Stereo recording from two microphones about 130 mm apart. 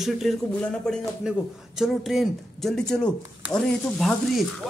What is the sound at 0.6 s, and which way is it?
A man's voice, 10° left (ahead or behind).